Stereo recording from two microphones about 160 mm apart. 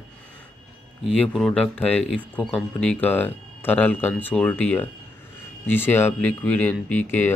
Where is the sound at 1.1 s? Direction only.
5° left (ahead or behind).